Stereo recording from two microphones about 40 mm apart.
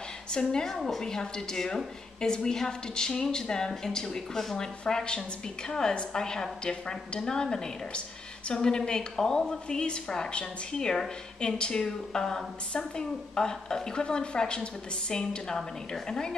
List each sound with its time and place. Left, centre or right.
0.3 s a woman's voice: centre
0.7 s a woman's voice: centre
1.0 s a woman's voice: centre